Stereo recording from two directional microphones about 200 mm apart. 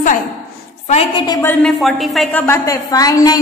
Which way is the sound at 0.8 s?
35° left (ahead or behind).